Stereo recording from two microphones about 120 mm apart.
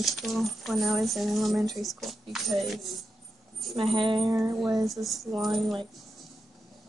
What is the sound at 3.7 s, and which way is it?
Speech, 45° right (ahead or behind).